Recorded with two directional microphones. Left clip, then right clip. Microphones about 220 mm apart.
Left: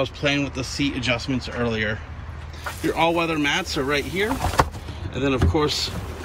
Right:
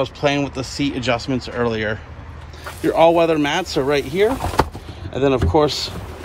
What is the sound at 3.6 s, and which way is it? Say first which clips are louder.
Speech: right 5 dB; 25° right (ahead or behind).